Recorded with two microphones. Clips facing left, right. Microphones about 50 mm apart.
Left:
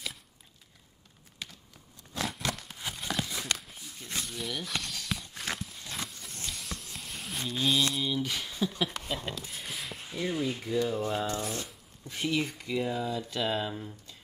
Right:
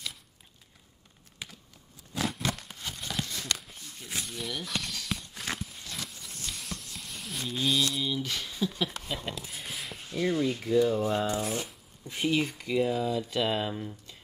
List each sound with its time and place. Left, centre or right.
2.1 s a sound: centre
2.8 s crumpling: centre
3.5 s walk: centre
6.0 s a sound: centre
10.2 s speech: centre
12.1 s speech: centre
12.4 s speech: centre